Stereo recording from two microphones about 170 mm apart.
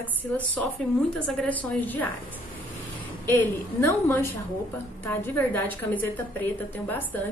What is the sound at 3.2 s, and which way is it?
Speech, 10° left (ahead or behind).